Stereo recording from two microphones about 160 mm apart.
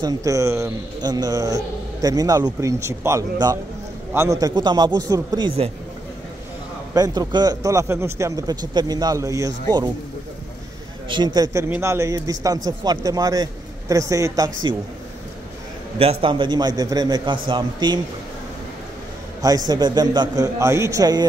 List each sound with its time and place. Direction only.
0.0 s speech: 20° right (ahead or behind)
6.9 s speech: 25° right (ahead or behind)
11.1 s speech: 30° right (ahead or behind)
16.0 s speech: 35° right (ahead or behind)
19.7 s speech: 25° right (ahead or behind)